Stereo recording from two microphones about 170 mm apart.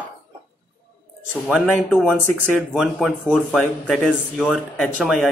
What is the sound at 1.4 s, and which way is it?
Speech, 5° right (ahead or behind).